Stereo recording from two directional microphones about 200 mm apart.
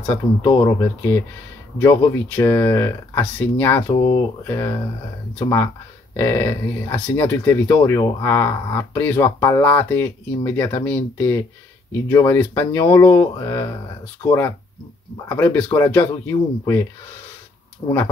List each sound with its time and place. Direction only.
0.1 s speech: 15° left (ahead or behind)
6.1 s speech: 15° left (ahead or behind)
15.2 s speech: 15° left (ahead or behind)
17.8 s speech: 25° left (ahead or behind)